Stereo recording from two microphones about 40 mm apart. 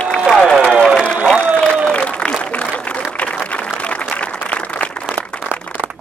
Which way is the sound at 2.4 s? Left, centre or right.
Left.